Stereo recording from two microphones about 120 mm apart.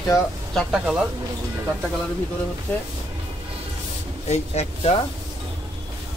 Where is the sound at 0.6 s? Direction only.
5° right (ahead or behind).